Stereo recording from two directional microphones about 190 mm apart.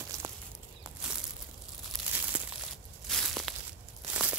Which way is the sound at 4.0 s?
5° right (ahead or behind).